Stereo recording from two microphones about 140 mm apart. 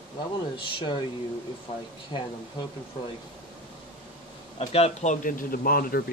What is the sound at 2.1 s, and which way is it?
Speech, 35° left (ahead or behind).